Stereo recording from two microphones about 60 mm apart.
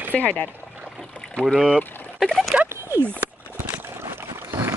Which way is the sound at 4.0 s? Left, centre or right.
Right.